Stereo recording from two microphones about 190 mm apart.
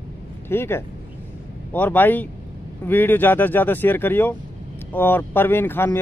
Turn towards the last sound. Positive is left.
turn(degrees=10)  # may be behind; listen again after turning